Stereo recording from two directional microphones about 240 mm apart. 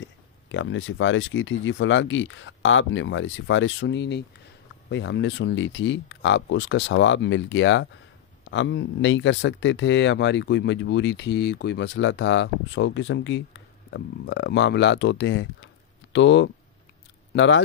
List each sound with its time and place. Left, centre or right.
0.0 s speech: left